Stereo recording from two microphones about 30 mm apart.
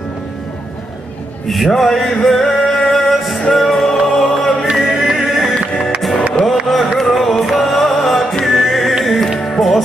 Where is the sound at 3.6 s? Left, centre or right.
Centre.